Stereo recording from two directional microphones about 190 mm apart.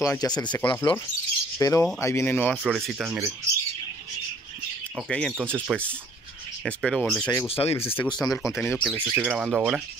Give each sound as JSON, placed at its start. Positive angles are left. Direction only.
{"t": 0.0, "sound": "speech", "side_deg": 15}
{"t": 2.5, "sound": "speech", "side_deg": 0}
{"t": 4.9, "sound": "speech", "side_deg": 5}
{"t": 5.4, "sound": "speech", "side_deg": -10}
{"t": 6.6, "sound": "speech", "side_deg": 0}
{"t": 7.4, "sound": "speech", "side_deg": 30}
{"t": 7.7, "sound": "speech", "side_deg": 10}
{"t": 8.5, "sound": "speech", "side_deg": 5}
{"t": 8.9, "sound": "speech", "side_deg": -10}